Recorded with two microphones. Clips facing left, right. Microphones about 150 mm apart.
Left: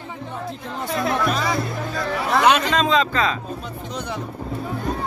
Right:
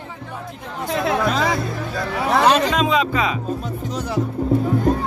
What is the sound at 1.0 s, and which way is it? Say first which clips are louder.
Music: right 3 dB; 90° right.